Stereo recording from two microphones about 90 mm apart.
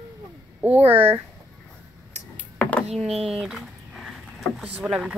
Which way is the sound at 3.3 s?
5° right (ahead or behind).